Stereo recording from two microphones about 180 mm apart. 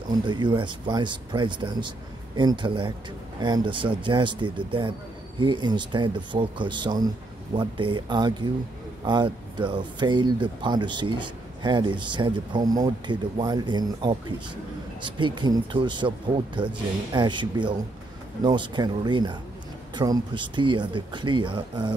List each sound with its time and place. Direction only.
0.1 s speech: 25° right (ahead or behind)